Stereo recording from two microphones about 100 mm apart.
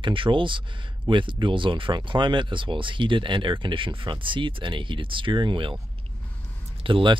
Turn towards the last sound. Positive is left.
turn(degrees=-55)  # may be behind; listen again after turning